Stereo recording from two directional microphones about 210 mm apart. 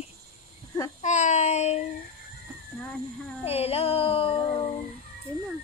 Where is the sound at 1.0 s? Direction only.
35° left (ahead or behind).